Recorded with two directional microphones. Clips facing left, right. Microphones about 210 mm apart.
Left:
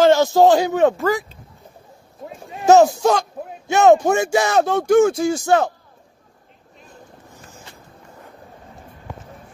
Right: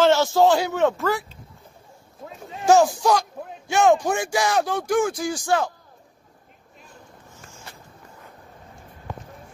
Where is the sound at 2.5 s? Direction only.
20° left (ahead or behind).